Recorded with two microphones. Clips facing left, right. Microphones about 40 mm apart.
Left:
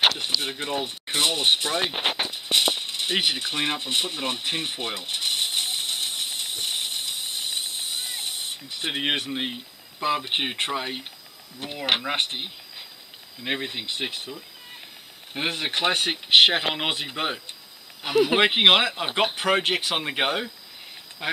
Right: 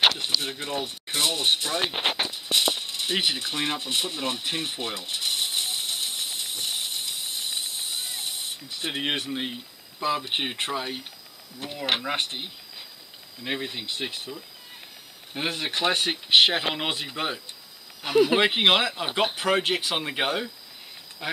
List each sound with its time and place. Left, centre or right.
0.4 s a sound: centre
7.9 s hiss: centre
8.8 s speech: centre
15.3 s speech: centre
18.4 s speech: left
21.2 s speech: left